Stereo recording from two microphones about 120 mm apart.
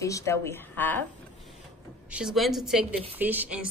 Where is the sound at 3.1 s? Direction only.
15° right (ahead or behind).